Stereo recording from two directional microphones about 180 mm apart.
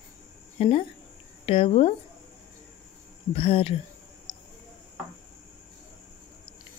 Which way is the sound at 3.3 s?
30° left (ahead or behind).